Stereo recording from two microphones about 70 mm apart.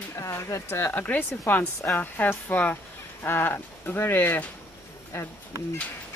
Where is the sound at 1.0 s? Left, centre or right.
Left.